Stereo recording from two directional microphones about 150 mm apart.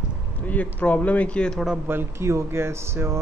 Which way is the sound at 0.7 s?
10° left (ahead or behind).